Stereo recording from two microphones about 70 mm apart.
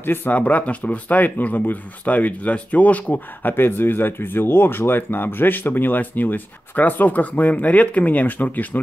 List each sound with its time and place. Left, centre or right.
0.0 s speech: left